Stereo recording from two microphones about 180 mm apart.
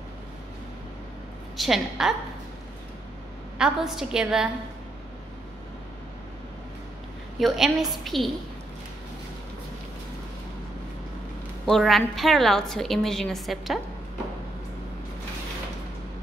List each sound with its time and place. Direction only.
1.6 s a woman's voice: centre (ahead or behind)
3.5 s a woman's voice: 5° right (ahead or behind)
7.3 s a woman's voice: centre (ahead or behind)
11.6 s a woman's voice: centre (ahead or behind)